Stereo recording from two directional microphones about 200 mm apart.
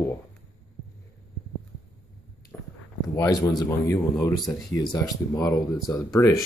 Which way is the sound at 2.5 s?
5° left (ahead or behind).